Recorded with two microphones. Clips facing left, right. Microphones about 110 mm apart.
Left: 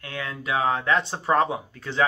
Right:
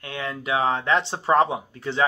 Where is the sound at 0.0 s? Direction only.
25° right (ahead or behind).